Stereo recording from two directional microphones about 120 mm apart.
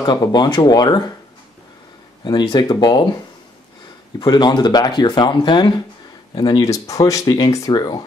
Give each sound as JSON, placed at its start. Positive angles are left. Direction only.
{"t": 0.0, "sound": "speech", "side_deg": 35}
{"t": 2.2, "sound": "speech", "side_deg": 35}
{"t": 4.2, "sound": "speech", "side_deg": 40}